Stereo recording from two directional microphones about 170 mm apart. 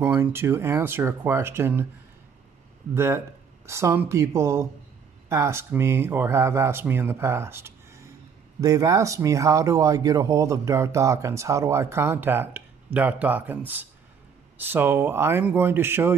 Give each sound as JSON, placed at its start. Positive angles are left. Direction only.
{"t": 0.0, "sound": "speech", "side_deg": -15}
{"t": 2.9, "sound": "speech", "side_deg": -15}